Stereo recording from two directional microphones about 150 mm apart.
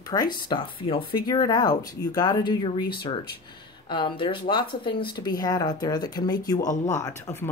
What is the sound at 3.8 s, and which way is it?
Speech, 30° left (ahead or behind).